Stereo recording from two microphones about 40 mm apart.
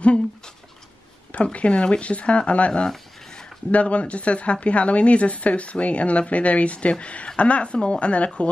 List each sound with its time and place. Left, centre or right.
1.3 s speech: left
3.3 s a sound: centre
3.7 s speech: left